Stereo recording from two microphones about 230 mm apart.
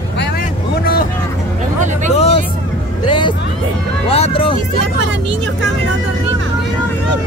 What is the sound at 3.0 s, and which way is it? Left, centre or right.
Speech, left.